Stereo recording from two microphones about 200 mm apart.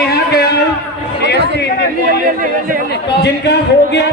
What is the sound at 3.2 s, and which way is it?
Speech, 55° left (ahead or behind).